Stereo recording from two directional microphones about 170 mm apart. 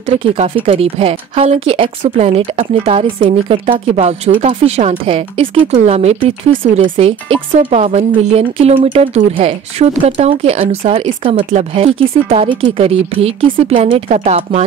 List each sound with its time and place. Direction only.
0.7 s speech: 35° right (ahead or behind)